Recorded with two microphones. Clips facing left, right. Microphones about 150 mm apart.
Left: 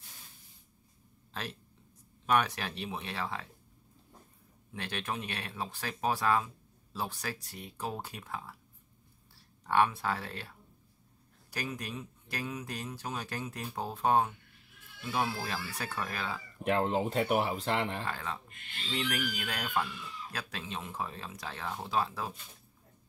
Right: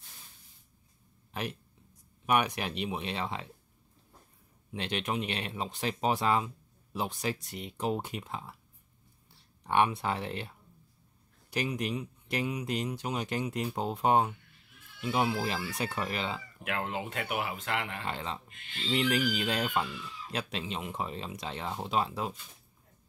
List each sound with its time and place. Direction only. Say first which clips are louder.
1.3 s speech: right 4 dB; 15° right (ahead or behind)
4.7 s speech: right 4 dB; 20° right (ahead or behind)
11.5 s speech: right 6 dB; 20° right (ahead or behind)
16.6 s speech: left 6 dB; 35° left (ahead or behind)
18.0 s speech: right 1 dB; 20° right (ahead or behind)